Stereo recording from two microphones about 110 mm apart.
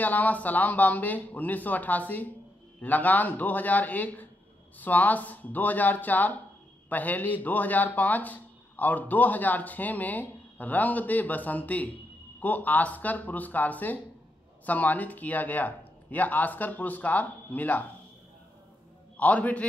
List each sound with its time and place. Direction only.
0.0 s speech: 15° left (ahead or behind)
19.1 s speech: 15° left (ahead or behind)